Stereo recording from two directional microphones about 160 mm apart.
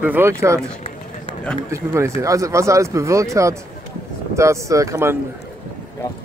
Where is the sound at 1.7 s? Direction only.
20° right (ahead or behind).